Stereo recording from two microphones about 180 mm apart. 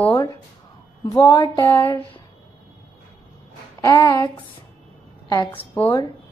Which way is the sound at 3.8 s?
15° left (ahead or behind).